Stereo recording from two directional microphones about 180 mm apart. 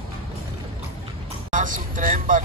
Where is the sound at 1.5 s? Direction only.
45° right (ahead or behind).